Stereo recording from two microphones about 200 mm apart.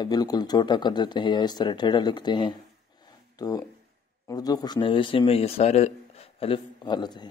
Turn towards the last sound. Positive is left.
turn(degrees=20)  # may be behind; listen again after turning